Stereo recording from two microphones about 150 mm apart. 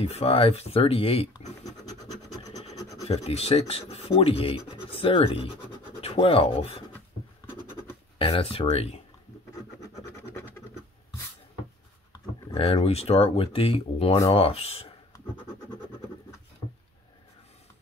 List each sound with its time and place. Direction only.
0.0 s speech: 40° left (ahead or behind)
3.0 s speech: 45° left (ahead or behind)
8.2 s speech: 40° left (ahead or behind)
12.5 s speech: 40° left (ahead or behind)